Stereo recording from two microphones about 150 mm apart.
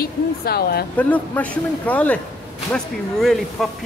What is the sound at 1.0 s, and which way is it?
A man's voice, 10° left (ahead or behind).